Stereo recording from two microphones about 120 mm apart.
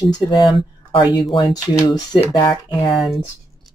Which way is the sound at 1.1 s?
35° left (ahead or behind).